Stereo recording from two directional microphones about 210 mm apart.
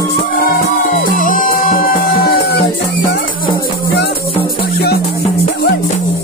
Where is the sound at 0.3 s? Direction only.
45° left (ahead or behind).